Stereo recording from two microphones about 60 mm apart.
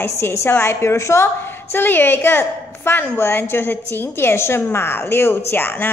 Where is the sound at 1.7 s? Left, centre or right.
Left.